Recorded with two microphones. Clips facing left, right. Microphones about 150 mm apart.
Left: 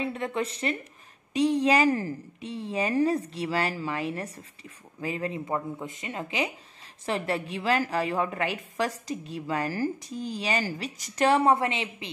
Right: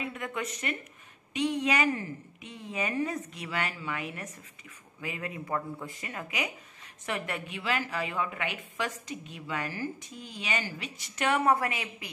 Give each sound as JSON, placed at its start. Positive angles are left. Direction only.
{"t": 0.0, "sound": "a woman's voice", "side_deg": 30}